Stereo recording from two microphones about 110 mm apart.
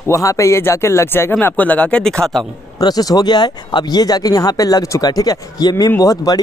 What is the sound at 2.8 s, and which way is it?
Speech, 35° left (ahead or behind).